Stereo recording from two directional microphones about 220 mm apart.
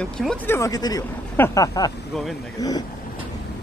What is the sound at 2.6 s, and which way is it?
Speech, 15° left (ahead or behind).